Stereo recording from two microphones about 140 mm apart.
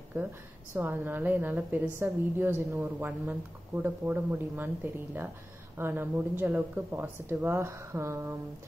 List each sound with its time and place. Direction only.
0.7 s a woman's voice: 15° right (ahead or behind)